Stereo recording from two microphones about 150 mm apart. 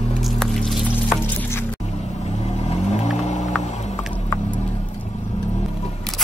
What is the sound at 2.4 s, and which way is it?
Vehicle, 45° left (ahead or behind).